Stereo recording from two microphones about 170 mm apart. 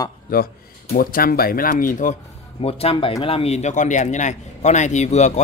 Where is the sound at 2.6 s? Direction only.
35° left (ahead or behind).